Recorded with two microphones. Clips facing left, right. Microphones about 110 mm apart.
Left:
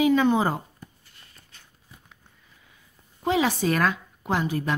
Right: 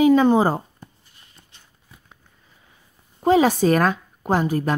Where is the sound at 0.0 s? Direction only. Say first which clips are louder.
Right 5 dB; 35° right (ahead or behind).